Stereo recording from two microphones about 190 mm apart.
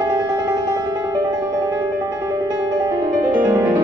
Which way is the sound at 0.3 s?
15° right (ahead or behind).